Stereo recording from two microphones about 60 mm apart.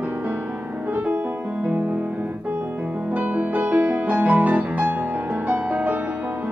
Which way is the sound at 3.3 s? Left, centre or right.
Right.